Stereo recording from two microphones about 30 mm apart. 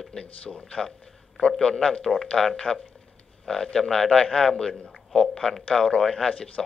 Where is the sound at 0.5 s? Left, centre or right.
Left.